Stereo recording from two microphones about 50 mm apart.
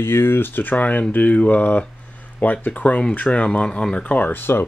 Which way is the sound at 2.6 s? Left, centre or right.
Left.